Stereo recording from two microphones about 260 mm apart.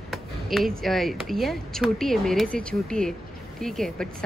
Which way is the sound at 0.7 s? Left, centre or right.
Centre.